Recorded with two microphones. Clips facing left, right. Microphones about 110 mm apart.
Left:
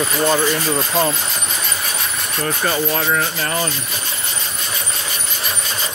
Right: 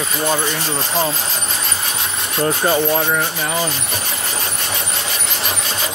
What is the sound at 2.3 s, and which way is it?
Speech, 25° right (ahead or behind).